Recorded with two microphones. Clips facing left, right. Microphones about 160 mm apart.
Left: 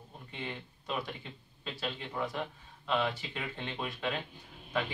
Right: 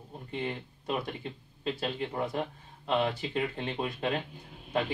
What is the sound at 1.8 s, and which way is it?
A man's voice, 40° right (ahead or behind).